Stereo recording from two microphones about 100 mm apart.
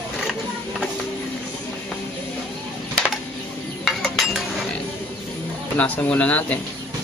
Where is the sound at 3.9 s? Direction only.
Centre (ahead or behind).